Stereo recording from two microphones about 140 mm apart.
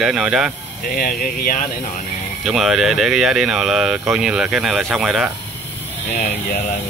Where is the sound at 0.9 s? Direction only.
90° left.